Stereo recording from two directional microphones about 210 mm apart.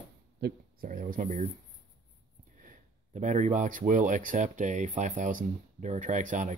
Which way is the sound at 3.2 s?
35° right (ahead or behind).